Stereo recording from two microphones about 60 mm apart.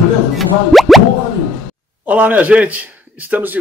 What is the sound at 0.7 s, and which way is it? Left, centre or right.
Plop, centre.